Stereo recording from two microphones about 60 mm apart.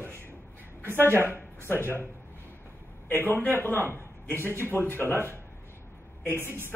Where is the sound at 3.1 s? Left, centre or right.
Left.